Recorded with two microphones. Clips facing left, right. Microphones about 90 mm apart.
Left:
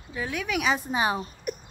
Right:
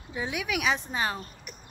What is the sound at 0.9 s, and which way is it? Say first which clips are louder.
Speech: left 5 dB; 15° left (ahead or behind).